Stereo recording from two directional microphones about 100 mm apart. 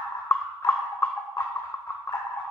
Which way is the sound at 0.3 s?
25° left (ahead or behind).